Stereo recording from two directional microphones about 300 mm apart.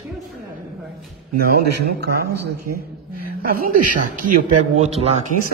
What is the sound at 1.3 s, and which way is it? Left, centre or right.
Speech, right.